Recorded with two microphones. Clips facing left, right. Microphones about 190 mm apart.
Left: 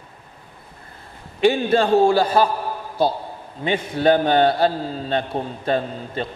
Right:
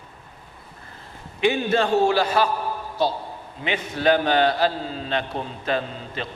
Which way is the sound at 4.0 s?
25° left (ahead or behind).